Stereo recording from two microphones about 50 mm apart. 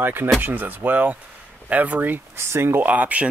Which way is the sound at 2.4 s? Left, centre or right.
Right.